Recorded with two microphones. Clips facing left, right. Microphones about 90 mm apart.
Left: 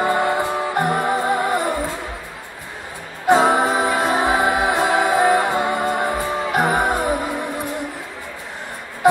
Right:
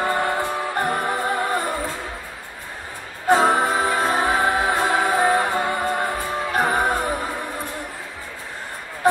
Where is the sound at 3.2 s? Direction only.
20° left (ahead or behind).